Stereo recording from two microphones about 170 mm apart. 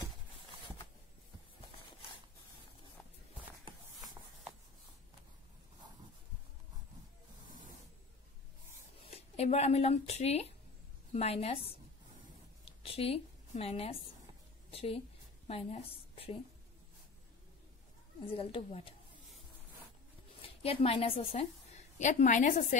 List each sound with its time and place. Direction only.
9.1 s speech: 40° left (ahead or behind)
12.6 s a sound: 35° left (ahead or behind)
14.7 s a woman's voice: 35° left (ahead or behind)
18.2 s speech: 30° left (ahead or behind)
20.4 s a woman's voice: 35° left (ahead or behind)